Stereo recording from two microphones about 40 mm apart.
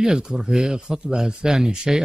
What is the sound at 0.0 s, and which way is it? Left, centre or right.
Speech, centre.